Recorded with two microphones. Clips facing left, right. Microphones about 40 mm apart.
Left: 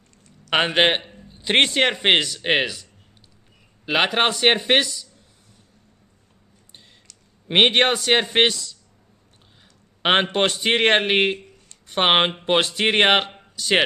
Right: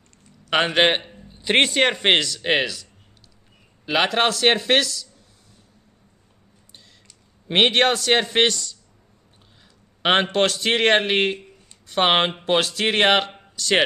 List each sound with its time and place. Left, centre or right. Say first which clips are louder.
0.6 s a man's voice: even; centre
2.1 s a man's voice: even; centre
7.4 s a man's voice: left 1 dB; centre
10.0 s a man's voice: even; centre
11.3 s a sound: even; centre
11.9 s a man's voice: left 1 dB; centre